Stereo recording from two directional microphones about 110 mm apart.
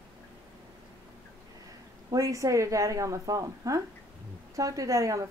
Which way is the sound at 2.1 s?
30° right (ahead or behind).